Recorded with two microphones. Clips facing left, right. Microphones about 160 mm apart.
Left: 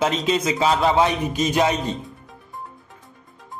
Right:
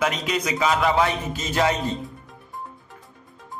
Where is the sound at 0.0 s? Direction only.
25° left (ahead or behind).